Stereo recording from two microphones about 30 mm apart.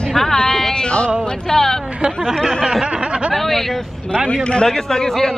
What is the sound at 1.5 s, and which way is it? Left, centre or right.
Speech, centre.